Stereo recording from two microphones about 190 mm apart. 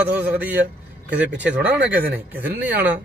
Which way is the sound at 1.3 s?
65° right (ahead or behind).